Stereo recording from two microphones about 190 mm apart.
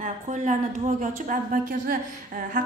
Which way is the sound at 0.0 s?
40° right (ahead or behind).